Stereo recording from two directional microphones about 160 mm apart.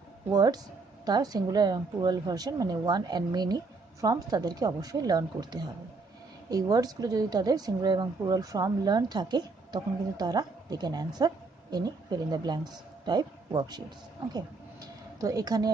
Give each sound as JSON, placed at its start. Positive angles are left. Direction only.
{"t": 0.3, "sound": "a woman's voice", "side_deg": -25}